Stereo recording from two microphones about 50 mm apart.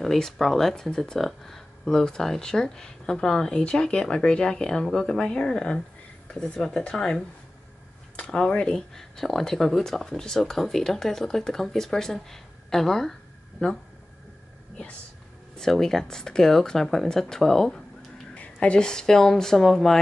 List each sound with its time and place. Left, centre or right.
0.0 s speech: centre
8.5 s speech: centre
15.5 s speech: centre
18.3 s speech: left; by 20.0 s centre